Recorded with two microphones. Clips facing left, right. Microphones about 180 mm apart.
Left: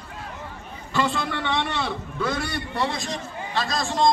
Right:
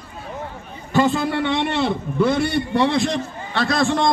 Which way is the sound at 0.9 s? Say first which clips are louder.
Right 7 dB; 45° right (ahead or behind).